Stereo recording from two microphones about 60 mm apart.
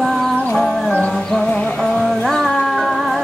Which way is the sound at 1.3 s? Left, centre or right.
Left.